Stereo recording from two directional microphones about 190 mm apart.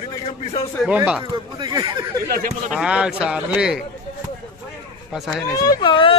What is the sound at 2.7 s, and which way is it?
A man's voice, 5° right (ahead or behind).